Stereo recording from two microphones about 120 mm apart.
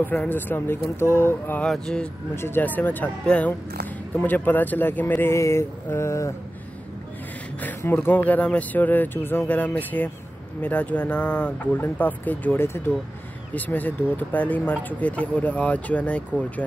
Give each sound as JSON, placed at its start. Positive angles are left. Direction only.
{"t": 0.0, "sound": "speech", "side_deg": 15}
{"t": 1.6, "sound": "speech", "side_deg": 5}
{"t": 2.3, "sound": "speech", "side_deg": 20}
{"t": 7.6, "sound": "speech", "side_deg": 15}